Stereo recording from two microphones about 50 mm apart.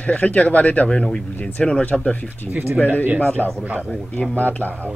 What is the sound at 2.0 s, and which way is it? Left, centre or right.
Speech, left.